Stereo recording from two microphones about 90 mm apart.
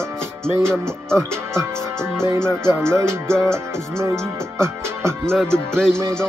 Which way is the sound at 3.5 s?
30° right (ahead or behind).